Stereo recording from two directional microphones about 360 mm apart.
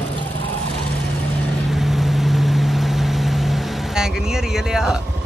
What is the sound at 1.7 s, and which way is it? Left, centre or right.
Vehicle, centre.